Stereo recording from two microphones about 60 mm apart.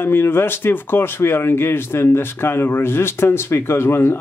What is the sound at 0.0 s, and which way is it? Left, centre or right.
Speech, left.